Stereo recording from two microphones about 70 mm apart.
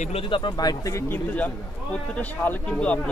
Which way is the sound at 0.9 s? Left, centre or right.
Left.